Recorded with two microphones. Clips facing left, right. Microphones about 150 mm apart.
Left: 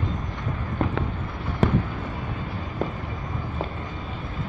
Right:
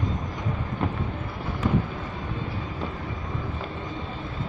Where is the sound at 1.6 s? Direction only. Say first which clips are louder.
Left 3 dB; 75° left (ahead or behind).